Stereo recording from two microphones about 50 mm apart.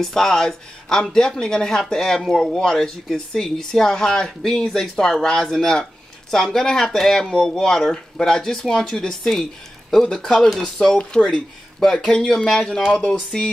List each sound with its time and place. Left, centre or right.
0.0 s speech: centre